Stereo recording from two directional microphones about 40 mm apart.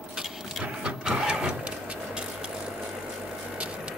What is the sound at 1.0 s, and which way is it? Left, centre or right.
Printer, centre.